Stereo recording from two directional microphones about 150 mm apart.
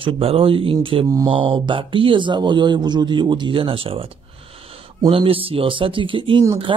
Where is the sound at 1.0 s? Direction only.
25° right (ahead or behind).